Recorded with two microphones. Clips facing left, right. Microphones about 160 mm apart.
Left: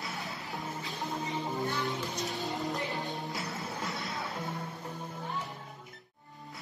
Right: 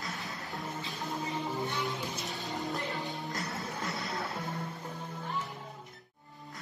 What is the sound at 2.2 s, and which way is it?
Music, centre (ahead or behind).